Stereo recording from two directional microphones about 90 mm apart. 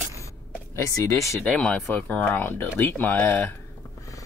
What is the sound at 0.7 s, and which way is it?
Speech, 35° left (ahead or behind).